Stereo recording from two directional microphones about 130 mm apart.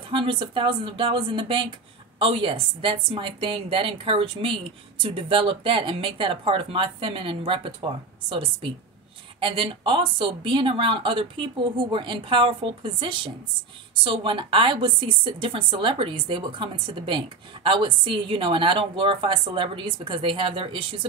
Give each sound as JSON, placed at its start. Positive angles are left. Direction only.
{"t": 0.1, "sound": "a woman's voice", "side_deg": -40}